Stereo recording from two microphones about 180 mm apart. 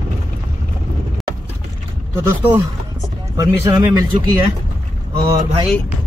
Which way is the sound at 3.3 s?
20° right (ahead or behind).